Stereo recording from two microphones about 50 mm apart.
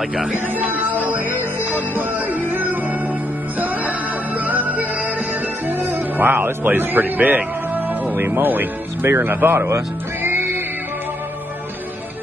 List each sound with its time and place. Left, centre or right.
0.6 s music: right
5.7 s music: right
8.2 s speech: right
9.6 s speech: right
10.2 s music: right